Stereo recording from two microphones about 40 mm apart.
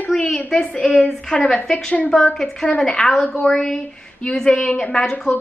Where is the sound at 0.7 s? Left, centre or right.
Left.